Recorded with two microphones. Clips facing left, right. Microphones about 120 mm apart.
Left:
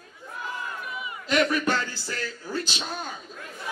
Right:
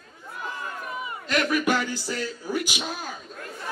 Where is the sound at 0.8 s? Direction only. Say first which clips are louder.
Right 2 dB; 40° right (ahead or behind).